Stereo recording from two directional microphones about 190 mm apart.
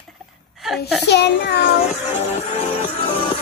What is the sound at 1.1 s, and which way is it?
Speech, 60° left (ahead or behind).